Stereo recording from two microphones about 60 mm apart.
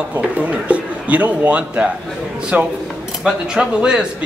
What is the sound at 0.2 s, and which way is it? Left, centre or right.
A man's voice, right.